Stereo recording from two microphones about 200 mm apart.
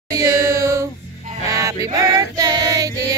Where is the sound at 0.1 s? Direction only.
15° right (ahead or behind).